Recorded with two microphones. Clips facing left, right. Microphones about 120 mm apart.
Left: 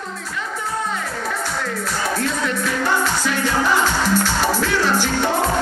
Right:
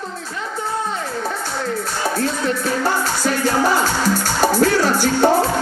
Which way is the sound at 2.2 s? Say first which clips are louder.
Right 2 dB; 35° right (ahead or behind).